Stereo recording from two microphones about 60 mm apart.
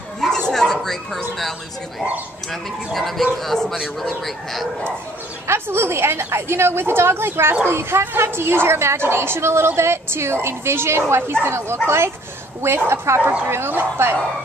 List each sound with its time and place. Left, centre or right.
0.2 s bow-wow: centre
2.5 s speech: centre
5.5 s a woman's voice: right